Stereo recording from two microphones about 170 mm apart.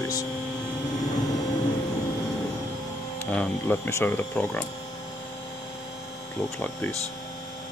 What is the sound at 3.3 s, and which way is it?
Speech, 10° left (ahead or behind).